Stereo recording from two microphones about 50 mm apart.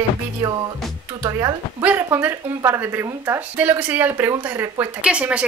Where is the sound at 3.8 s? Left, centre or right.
Right.